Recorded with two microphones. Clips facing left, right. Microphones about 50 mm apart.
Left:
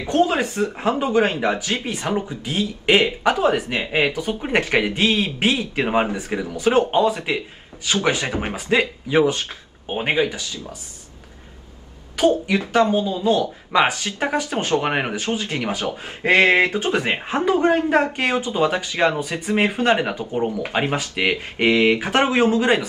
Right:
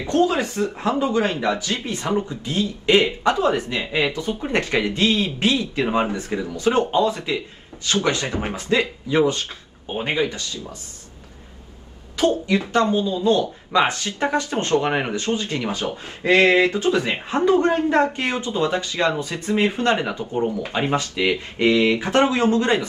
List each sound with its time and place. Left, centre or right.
0.0 s speech: left
12.2 s speech: left